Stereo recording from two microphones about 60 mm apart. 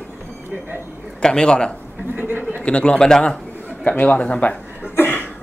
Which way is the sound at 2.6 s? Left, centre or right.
Centre.